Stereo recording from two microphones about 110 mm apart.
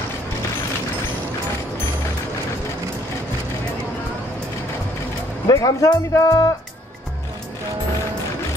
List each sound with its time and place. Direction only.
5.5 s speech: 35° left (ahead or behind)